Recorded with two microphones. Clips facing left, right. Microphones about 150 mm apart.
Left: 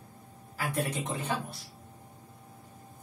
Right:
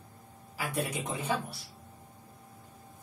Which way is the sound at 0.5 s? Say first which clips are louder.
Left 1 dB; 10° right (ahead or behind).